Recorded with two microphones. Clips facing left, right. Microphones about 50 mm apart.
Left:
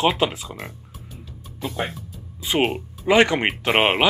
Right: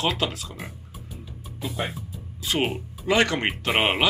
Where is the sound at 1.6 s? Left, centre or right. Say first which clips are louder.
Left 3 dB; centre.